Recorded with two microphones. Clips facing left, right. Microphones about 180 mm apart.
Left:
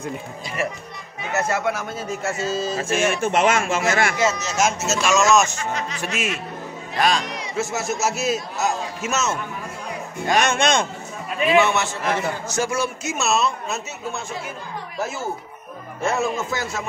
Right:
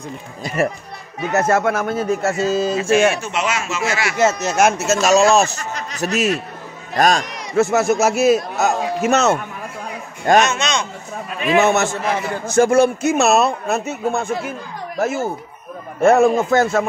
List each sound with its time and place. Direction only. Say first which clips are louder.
0.4 s a man's voice: right 9 dB; 50° right (ahead or behind)
3.2 s speech: left 4 dB; 50° left (ahead or behind)
4.2 s speech: right 5 dB; 55° right (ahead or behind)
5.1 s speech: right 3 dB; 35° right (ahead or behind); by 9.4 s 60° right (ahead or behind)
10.4 s speech: left 1 dB; 55° left (ahead or behind)
11.4 s a man's voice: right 3 dB; 45° right (ahead or behind)